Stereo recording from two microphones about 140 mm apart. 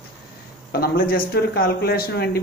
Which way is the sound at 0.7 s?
90° left.